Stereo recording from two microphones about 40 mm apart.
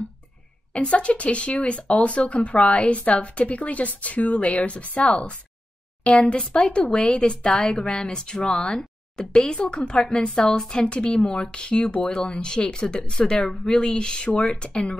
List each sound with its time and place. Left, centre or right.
0.7 s a woman's voice: left